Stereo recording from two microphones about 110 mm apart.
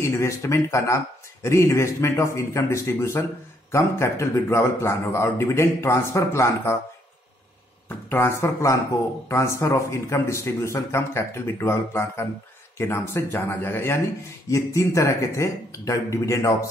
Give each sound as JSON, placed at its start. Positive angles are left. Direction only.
{"t": 0.0, "sound": "a man's voice", "side_deg": 25}
{"t": 8.1, "sound": "a man's voice", "side_deg": 25}